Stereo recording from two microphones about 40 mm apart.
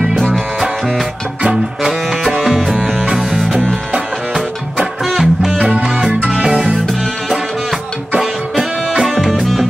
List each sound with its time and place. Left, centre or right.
0.3 s music: centre
1.4 s music: centre
2.2 s music: centre
4.7 s music: centre
5.6 s music: right
8.2 s music: centre